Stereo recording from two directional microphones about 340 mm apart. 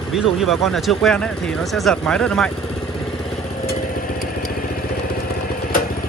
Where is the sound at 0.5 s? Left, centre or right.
Centre.